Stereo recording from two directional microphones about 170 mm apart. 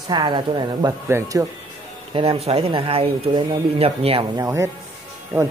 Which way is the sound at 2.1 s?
35° right (ahead or behind).